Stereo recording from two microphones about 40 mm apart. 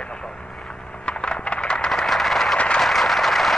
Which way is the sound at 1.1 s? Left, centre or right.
Left.